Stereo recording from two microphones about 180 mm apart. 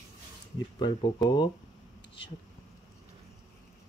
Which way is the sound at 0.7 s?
25° left (ahead or behind).